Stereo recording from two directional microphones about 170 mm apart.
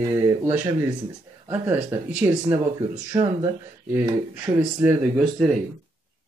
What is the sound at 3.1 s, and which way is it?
Speech, 25° right (ahead or behind).